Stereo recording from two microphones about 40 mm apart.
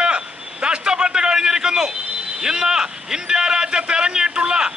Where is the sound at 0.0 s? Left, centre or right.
Right.